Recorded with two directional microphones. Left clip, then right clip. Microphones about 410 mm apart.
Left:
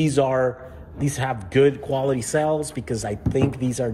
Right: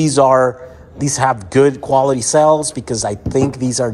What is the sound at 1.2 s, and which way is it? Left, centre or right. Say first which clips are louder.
Speech: right 7 dB; right.